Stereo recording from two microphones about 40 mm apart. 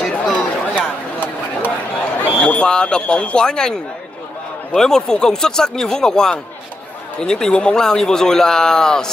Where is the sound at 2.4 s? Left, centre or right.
Left.